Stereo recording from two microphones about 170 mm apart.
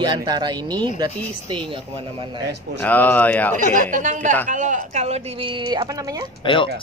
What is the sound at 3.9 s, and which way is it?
Speech, 45° right (ahead or behind).